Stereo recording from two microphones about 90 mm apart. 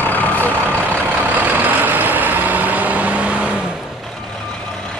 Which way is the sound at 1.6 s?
20° right (ahead or behind).